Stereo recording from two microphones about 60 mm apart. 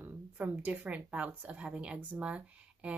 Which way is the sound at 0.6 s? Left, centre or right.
Right.